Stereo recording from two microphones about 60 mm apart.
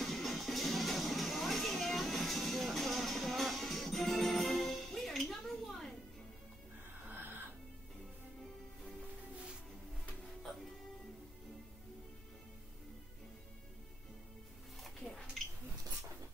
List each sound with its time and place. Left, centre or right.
0.0 s music: centre
7.1 s music: right
14.8 s a sound: centre